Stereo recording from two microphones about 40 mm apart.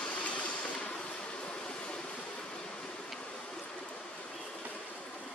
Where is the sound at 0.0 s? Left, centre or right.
Left.